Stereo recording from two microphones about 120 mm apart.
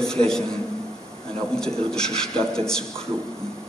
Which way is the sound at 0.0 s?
5° left (ahead or behind).